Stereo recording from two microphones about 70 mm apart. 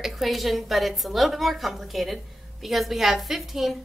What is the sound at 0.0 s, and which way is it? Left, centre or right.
A woman's voice, centre.